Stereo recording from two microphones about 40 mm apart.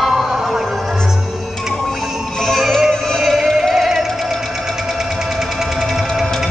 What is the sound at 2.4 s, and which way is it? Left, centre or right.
Music, centre.